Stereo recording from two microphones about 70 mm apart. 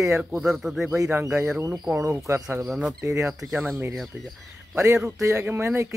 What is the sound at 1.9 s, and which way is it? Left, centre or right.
Speech, right.